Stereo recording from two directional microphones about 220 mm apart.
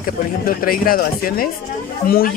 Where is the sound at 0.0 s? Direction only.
40° left (ahead or behind).